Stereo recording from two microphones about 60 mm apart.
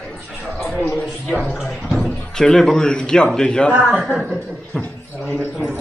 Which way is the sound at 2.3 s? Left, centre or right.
Centre.